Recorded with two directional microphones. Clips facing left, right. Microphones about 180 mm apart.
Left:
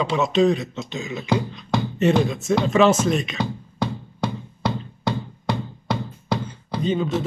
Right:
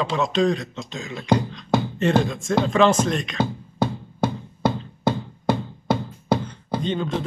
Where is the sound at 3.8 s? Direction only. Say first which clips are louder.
Right 3 dB; 50° right (ahead or behind).